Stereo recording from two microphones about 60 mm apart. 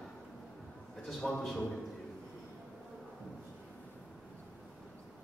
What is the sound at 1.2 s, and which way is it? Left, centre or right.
Speech, centre.